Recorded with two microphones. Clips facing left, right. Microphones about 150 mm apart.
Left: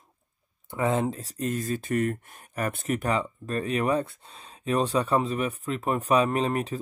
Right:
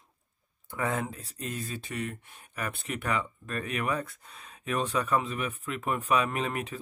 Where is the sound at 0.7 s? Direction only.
25° left (ahead or behind).